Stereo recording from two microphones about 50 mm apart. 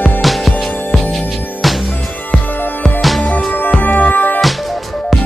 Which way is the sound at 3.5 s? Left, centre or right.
Left.